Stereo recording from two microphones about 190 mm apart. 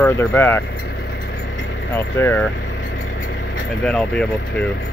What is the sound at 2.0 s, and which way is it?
Speech, 10° left (ahead or behind).